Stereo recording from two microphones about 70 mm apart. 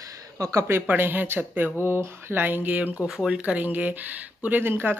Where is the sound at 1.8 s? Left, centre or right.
Right.